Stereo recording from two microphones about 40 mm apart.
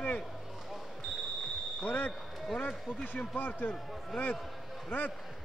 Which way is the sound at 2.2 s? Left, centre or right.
Centre.